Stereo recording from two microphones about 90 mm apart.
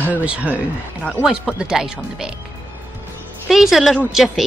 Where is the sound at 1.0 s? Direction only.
15° left (ahead or behind).